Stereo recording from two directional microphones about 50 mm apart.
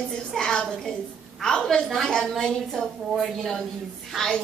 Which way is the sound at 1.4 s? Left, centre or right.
Centre.